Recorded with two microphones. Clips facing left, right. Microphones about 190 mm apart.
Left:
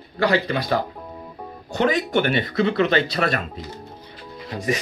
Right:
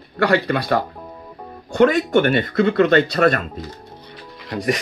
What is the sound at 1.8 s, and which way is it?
Speech, 50° right (ahead or behind).